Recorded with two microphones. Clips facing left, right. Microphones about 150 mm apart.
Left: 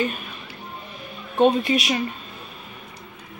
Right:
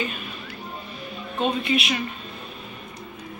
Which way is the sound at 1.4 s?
40° left (ahead or behind).